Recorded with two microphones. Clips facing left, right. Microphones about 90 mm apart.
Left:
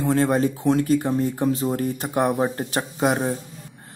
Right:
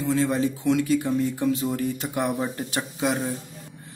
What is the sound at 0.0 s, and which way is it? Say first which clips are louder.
Speech: left 3 dB; 50° left (ahead or behind).